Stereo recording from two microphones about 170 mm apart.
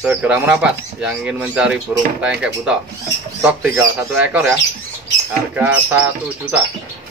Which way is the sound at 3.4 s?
15° right (ahead or behind).